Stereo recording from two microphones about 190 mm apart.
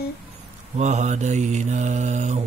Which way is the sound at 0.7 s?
40° right (ahead or behind).